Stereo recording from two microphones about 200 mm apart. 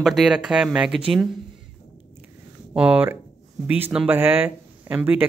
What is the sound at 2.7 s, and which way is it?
Speech, 10° right (ahead or behind).